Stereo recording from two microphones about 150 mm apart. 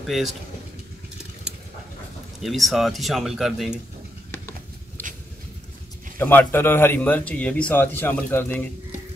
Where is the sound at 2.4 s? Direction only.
Centre (ahead or behind).